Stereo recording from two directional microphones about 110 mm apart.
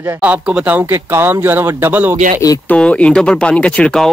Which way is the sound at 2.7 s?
10° left (ahead or behind).